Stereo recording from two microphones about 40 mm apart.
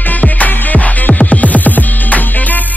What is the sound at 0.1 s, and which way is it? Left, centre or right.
Music, left.